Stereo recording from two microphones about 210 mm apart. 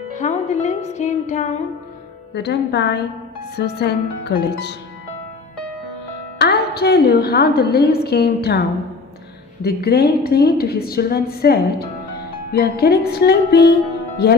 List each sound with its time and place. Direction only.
0.1 s speech: 35° left (ahead or behind)
2.3 s a woman's voice: 55° left (ahead or behind)
6.3 s a woman's voice: 50° left (ahead or behind)